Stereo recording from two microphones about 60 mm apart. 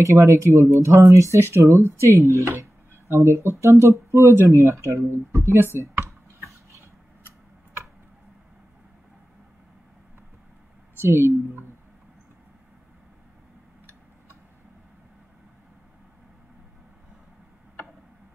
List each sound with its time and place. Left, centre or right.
0.0 s speech: right
5.6 s computer keyboard: right
11.0 s speech: right